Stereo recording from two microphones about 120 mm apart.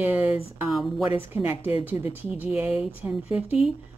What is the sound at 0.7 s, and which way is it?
Speech, centre (ahead or behind).